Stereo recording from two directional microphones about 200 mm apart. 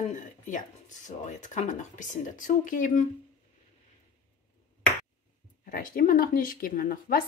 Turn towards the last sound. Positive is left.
turn(degrees=45)  # may be behind; listen again after turning